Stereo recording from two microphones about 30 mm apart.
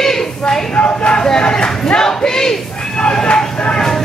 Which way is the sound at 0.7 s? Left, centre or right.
Left.